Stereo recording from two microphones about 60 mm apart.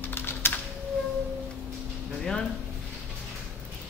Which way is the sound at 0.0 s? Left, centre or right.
Left.